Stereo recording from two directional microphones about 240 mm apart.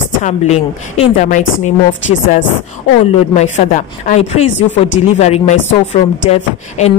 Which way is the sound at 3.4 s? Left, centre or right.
Left.